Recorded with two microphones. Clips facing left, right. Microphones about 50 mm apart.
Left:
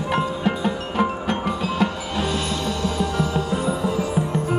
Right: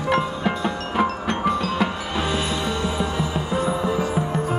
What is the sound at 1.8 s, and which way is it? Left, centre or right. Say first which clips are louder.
Music: left 1 dB; centre.